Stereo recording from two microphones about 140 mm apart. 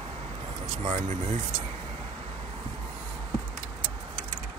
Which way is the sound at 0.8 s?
50° right (ahead or behind).